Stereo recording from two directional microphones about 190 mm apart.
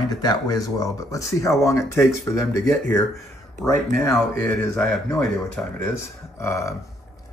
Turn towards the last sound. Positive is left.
turn(degrees=15)  # may be behind; listen again after turning